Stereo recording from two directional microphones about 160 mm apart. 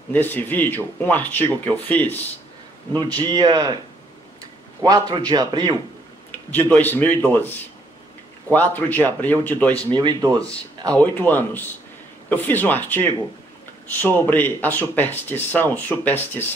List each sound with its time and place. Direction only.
0.1 s speech: 10° left (ahead or behind)
2.9 s speech: 25° right (ahead or behind)
4.8 s speech: 25° right (ahead or behind)
6.5 s speech: 10° left (ahead or behind)
8.7 s speech: 10° left (ahead or behind)
9.9 s speech: 25° right (ahead or behind)
11.0 s speech: 10° left (ahead or behind)